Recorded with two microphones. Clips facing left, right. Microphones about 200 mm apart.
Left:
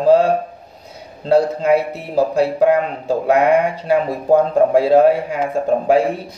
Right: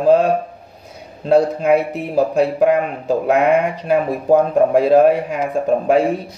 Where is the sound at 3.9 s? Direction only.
55° right (ahead or behind).